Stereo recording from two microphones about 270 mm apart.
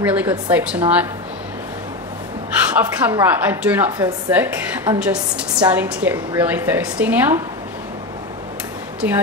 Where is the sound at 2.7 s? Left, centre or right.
Centre.